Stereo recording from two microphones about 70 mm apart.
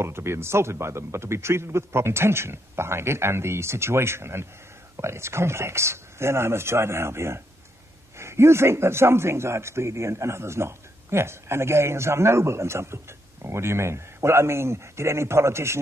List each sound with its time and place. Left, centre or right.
0.0 s a man's voice: right